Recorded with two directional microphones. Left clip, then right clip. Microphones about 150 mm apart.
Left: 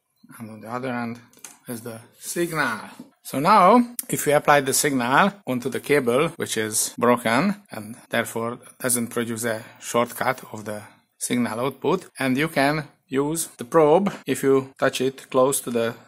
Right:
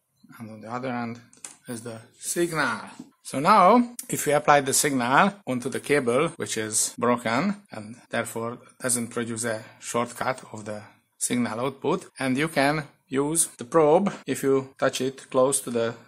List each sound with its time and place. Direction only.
0.3 s speech: 25° left (ahead or behind)
13.6 s speech: 30° left (ahead or behind)